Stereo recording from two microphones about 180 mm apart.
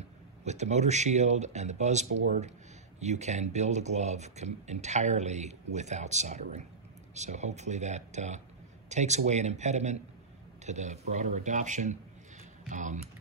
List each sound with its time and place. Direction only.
0.5 s speech: 40° right (ahead or behind)